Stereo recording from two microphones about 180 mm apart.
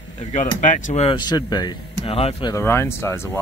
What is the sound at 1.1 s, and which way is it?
Speech, 25° left (ahead or behind).